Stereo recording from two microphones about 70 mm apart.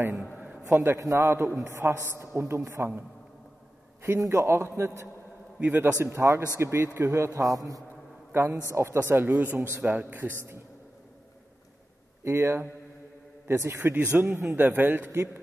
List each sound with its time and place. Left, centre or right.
0.7 s a man's voice: right
4.2 s a man's voice: right
5.6 s a man's voice: right
6.0 s a woman's voice: right
7.3 s a man's voice: right
8.3 s a man's voice: right
10.3 s a woman's voice: right
12.2 s a woman's voice: right